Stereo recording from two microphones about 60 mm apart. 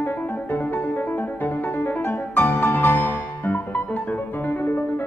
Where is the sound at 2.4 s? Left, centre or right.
Left.